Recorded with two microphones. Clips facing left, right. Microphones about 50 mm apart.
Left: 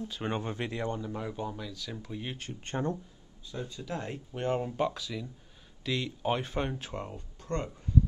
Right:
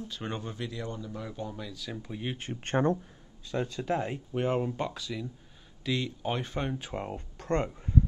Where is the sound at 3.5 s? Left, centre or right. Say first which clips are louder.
Right 7 dB; right.